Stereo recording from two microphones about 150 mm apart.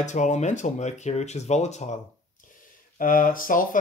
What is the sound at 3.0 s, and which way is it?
Speech, 65° left (ahead or behind).